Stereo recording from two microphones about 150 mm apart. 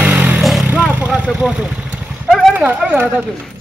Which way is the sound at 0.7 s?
10° right (ahead or behind).